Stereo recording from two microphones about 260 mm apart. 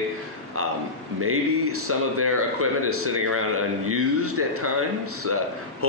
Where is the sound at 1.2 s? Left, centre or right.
Right.